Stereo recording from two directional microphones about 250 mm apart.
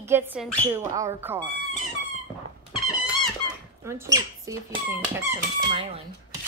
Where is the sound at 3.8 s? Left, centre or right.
Centre.